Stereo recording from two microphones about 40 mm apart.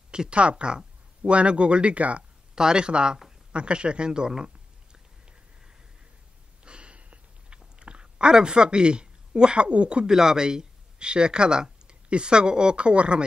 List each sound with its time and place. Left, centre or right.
0.1 s speech: right
2.5 s speech: centre
6.6 s chewing: right
10.0 s speech: centre